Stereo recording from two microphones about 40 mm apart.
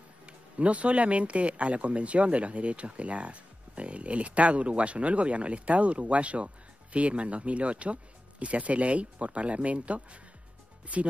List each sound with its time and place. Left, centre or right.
0.3 s speech: right